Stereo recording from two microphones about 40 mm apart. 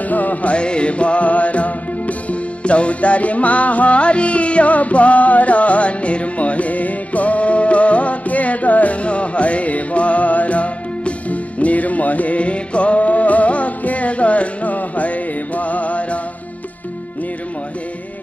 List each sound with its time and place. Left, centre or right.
0.1 s music: left